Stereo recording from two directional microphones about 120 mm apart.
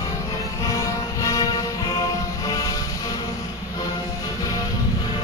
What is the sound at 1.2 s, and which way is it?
Music, 30° left (ahead or behind).